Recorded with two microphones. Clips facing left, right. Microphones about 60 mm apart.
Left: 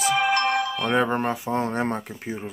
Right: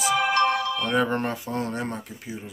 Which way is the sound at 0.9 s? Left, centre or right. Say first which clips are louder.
Left 2 dB; centre.